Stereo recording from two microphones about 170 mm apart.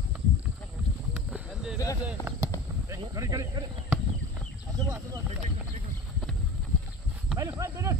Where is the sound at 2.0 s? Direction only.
10° right (ahead or behind).